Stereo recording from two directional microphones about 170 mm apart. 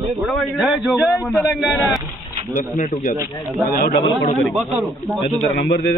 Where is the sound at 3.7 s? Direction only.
60° left (ahead or behind).